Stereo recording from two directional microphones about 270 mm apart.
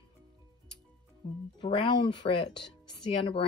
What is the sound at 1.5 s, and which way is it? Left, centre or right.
Speech, centre.